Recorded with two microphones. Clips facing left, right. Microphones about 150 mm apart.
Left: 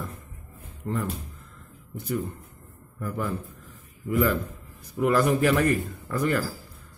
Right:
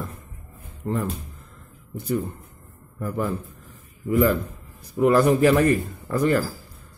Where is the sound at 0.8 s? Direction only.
35° right (ahead or behind).